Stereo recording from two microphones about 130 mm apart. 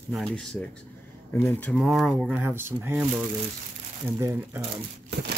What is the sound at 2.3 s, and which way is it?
Speech, 15° right (ahead or behind).